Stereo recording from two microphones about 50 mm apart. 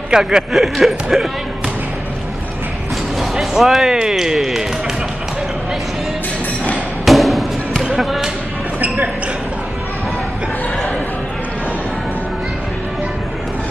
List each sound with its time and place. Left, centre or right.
0.1 s speech: centre
0.5 s a sound: centre
3.2 s speech: centre
7.1 s music: centre
7.9 s basketball bounce: centre
8.8 s speech: right